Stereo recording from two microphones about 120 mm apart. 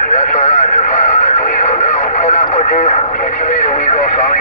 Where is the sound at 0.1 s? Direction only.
90° left.